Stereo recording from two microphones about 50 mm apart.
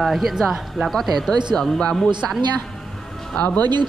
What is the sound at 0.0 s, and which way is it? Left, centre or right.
Speech, centre.